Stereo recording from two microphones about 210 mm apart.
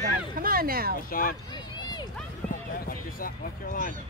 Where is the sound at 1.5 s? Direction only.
20° left (ahead or behind).